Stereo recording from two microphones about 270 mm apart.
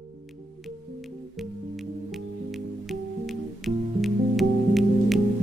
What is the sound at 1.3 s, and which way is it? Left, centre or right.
Music, centre.